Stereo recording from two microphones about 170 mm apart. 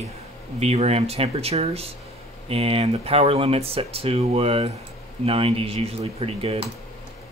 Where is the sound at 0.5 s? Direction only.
40° right (ahead or behind).